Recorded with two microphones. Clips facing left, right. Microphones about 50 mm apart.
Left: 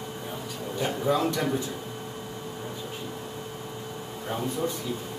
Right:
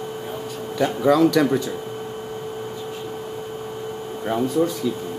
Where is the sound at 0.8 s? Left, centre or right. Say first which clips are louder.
Right 9 dB; right.